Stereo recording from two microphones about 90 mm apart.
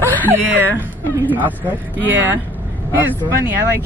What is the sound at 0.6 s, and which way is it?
Speech, 25° right (ahead or behind).